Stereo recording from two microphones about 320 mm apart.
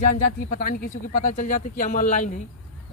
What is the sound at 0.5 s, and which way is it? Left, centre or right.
Speech, left.